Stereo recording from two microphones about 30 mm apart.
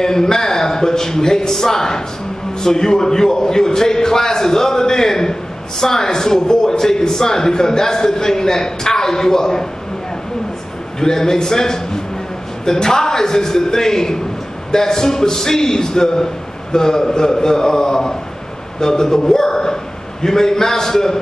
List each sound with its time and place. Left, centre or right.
0.0 s a man's voice: centre
11.0 s a man's voice: centre